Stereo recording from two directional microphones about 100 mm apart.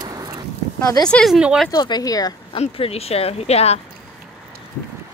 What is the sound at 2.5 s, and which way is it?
Speech, 80° left.